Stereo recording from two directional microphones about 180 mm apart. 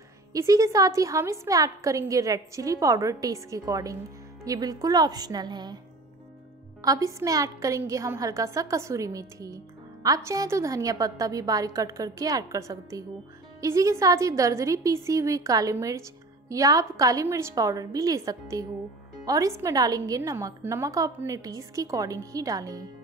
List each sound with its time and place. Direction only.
0.3 s a woman's voice: 20° right (ahead or behind)
6.8 s a woman's voice: 20° right (ahead or behind)